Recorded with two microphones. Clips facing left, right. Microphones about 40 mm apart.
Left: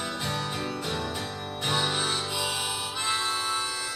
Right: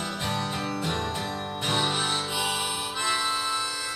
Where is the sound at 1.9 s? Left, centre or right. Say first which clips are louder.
Right 1 dB; centre.